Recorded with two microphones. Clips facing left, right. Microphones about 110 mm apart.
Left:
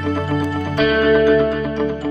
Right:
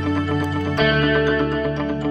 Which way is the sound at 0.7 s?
Centre (ahead or behind).